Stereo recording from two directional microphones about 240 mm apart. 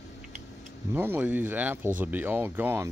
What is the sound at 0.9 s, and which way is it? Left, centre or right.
Speech, centre.